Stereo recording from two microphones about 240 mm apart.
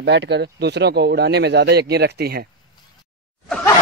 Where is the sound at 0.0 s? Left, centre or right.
Right.